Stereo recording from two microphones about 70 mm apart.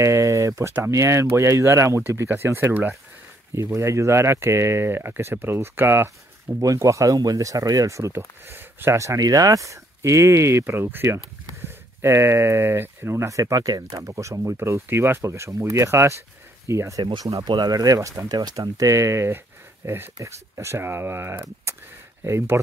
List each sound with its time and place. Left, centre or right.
0.0 s speech: right
3.5 s speech: right
6.6 s speech: right
8.1 s speech: right
8.9 s speech: right
9.2 s speech: right
17.0 s speech: right
18.4 s speech: right